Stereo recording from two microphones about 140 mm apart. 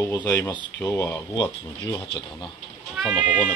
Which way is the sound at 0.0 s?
15° left (ahead or behind).